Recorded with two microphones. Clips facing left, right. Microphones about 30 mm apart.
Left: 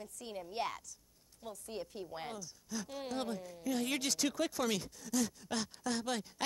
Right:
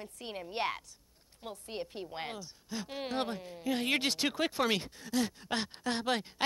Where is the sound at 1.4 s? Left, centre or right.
Right.